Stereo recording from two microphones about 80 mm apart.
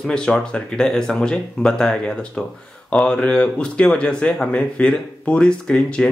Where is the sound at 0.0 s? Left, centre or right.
Centre.